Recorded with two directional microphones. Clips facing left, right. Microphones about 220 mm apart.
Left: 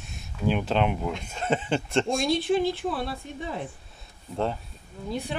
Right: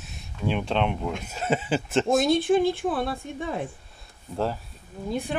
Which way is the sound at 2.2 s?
50° right (ahead or behind).